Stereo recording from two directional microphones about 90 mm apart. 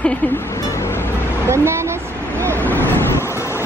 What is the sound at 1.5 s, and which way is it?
Speech, 30° right (ahead or behind).